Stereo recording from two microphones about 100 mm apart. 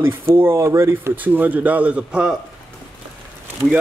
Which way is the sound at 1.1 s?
15° right (ahead or behind).